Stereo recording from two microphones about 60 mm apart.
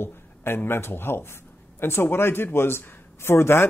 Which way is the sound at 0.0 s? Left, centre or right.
Left.